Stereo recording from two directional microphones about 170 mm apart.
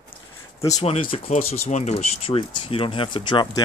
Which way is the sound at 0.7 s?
35° left (ahead or behind).